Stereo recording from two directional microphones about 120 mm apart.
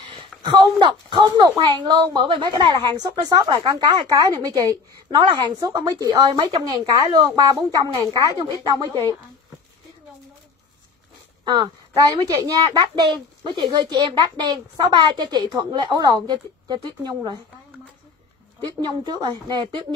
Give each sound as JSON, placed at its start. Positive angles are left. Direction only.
{"t": 0.1, "sound": "a sound", "side_deg": -40}
{"t": 0.7, "sound": "a woman's voice", "side_deg": -40}
{"t": 5.1, "sound": "a woman's voice", "side_deg": -40}
{"t": 11.4, "sound": "a woman's voice", "side_deg": -35}
{"t": 18.6, "sound": "a woman's voice", "side_deg": -35}